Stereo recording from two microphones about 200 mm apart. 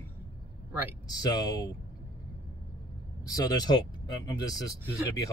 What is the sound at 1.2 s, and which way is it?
Speech, 20° left (ahead or behind).